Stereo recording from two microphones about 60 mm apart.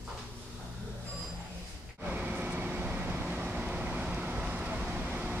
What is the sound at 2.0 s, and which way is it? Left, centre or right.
Vehicle, right.